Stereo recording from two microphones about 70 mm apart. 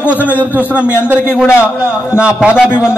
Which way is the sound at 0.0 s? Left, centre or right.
Left.